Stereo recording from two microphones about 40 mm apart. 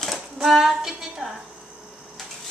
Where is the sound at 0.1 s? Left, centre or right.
Centre.